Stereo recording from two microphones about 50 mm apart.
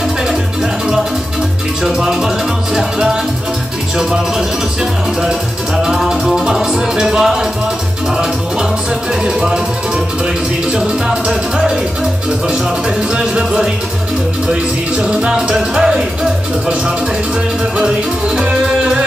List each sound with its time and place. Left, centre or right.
2.0 s music: centre
6.0 s music: centre
9.2 s speech: centre
10.8 s speech: centre
13.2 s speech: centre
17.7 s speech: centre